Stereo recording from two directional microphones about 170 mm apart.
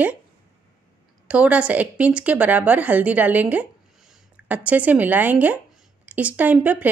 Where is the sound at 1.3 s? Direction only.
10° right (ahead or behind).